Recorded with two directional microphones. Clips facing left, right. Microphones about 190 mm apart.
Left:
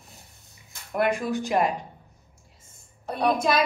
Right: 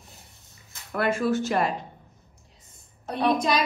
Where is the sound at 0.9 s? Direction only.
15° left (ahead or behind).